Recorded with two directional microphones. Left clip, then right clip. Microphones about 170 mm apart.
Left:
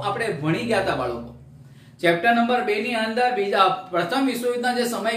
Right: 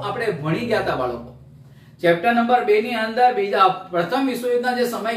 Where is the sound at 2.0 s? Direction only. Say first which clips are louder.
Right 1 dB; 25° left (ahead or behind).